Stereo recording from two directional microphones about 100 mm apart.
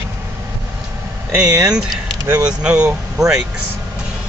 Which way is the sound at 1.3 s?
10° right (ahead or behind).